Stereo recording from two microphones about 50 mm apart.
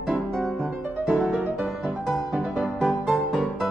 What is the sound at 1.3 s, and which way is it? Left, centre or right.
Music, centre.